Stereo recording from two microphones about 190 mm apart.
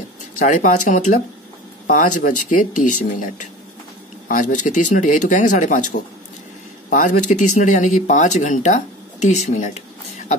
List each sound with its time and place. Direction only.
0.2 s speech: 40° left (ahead or behind)